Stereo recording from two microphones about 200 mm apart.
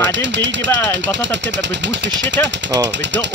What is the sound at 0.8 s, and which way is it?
Speech, 10° left (ahead or behind).